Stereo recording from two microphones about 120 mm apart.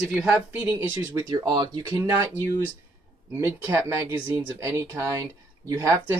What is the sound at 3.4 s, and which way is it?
Speech, 15° right (ahead or behind).